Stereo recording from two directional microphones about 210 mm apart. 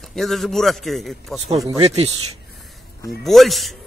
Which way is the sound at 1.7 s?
30° right (ahead or behind).